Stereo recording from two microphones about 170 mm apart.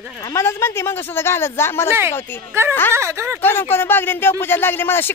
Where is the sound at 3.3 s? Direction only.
10° left (ahead or behind).